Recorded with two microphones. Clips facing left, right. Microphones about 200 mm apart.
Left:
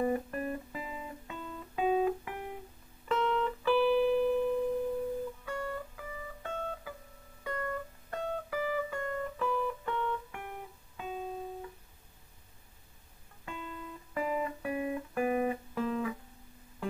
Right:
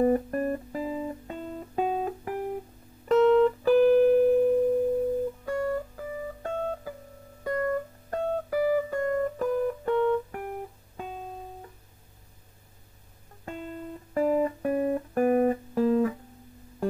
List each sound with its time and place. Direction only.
0.0 s music: 45° right (ahead or behind)
13.5 s music: 45° right (ahead or behind)